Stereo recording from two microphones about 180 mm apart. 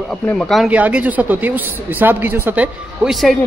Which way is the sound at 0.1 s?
5° left (ahead or behind).